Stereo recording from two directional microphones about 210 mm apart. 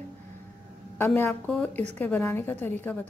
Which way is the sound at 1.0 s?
10° left (ahead or behind).